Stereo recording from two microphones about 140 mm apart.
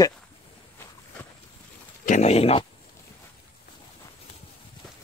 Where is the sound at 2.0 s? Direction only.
55° left (ahead or behind).